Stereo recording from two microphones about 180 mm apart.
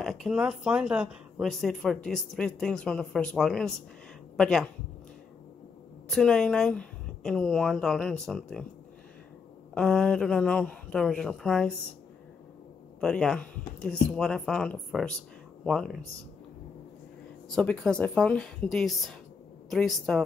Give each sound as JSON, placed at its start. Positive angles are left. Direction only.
{"t": 0.0, "sound": "speech", "side_deg": 0}
{"t": 6.0, "sound": "speech", "side_deg": 5}
{"t": 9.8, "sound": "speech", "side_deg": 5}
{"t": 13.0, "sound": "speech", "side_deg": 5}
{"t": 17.5, "sound": "speech", "side_deg": 5}